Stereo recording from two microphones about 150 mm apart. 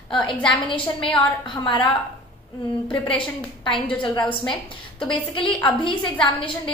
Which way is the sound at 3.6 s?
35° left (ahead or behind).